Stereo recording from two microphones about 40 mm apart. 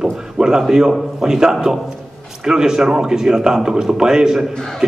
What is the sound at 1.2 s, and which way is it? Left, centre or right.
A man's voice, centre.